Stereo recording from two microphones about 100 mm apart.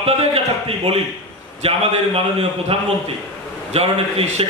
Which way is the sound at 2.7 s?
70° right (ahead or behind).